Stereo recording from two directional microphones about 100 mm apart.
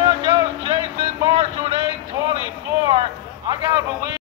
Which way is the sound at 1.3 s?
85° right.